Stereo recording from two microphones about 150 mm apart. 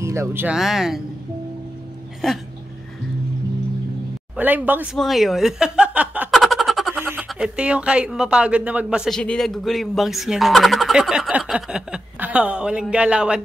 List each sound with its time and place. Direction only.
0.0 s speech: 20° right (ahead or behind)
0.6 s speech: 5° right (ahead or behind)
4.4 s speech: 10° right (ahead or behind)
4.9 s a woman's voice: centre (ahead or behind)
6.3 s a sound: centre (ahead or behind)
7.0 s a sound: 15° right (ahead or behind)
7.2 s speech: 5° right (ahead or behind)